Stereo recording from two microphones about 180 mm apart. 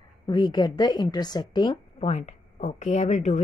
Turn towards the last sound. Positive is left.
turn(degrees=40)  # may be behind; listen again after turning